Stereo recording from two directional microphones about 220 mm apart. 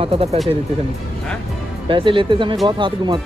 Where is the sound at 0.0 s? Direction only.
25° right (ahead or behind).